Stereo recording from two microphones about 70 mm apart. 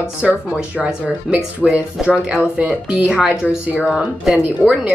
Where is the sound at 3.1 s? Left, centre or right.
Centre.